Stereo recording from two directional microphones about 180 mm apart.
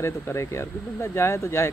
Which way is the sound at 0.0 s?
15° left (ahead or behind).